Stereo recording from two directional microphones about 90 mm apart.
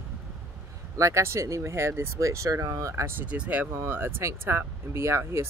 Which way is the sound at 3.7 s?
25° right (ahead or behind).